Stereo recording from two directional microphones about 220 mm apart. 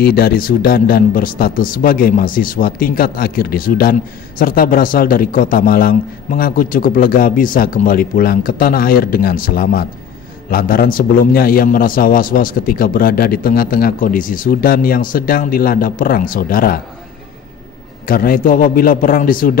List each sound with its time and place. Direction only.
0.0 s a man's voice: 45° left (ahead or behind)
18.0 s a man's voice: 40° left (ahead or behind)